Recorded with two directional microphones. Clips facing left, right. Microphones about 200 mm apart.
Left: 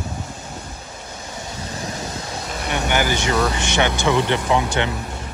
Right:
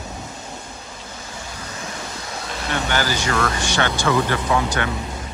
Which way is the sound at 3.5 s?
20° left (ahead or behind).